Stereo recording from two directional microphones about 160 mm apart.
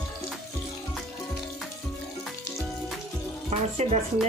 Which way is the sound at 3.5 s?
45° right (ahead or behind).